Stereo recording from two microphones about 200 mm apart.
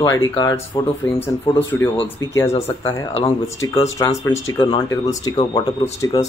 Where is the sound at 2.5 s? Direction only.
30° left (ahead or behind).